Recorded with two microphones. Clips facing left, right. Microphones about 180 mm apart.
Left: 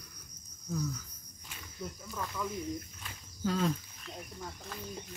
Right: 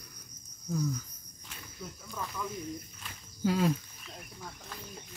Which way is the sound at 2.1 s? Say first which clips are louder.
Even; centre (ahead or behind).